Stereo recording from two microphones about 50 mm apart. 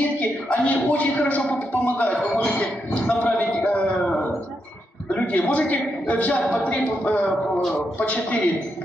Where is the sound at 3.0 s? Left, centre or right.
Left.